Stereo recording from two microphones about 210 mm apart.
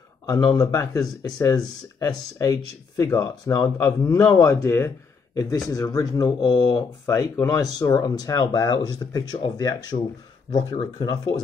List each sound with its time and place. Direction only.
0.3 s speech: 15° left (ahead or behind)